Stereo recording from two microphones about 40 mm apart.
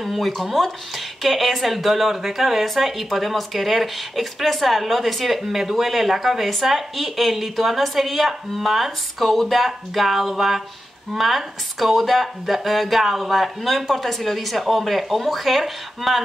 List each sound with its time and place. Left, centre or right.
0.0 s speech: centre